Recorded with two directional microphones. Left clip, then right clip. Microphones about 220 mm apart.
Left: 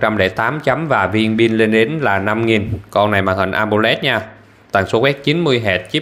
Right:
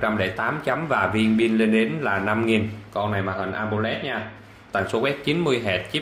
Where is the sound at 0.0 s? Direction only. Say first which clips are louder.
Left 8 dB; 35° left (ahead or behind).